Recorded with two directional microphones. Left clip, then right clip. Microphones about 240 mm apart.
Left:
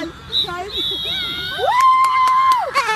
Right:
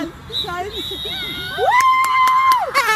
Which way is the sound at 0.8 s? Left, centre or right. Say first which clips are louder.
Left 3 dB; centre.